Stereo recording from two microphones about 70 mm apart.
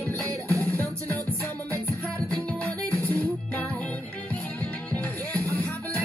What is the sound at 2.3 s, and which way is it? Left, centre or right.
Music, centre.